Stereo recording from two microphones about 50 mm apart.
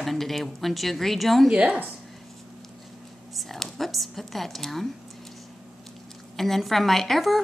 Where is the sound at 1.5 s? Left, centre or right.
Right.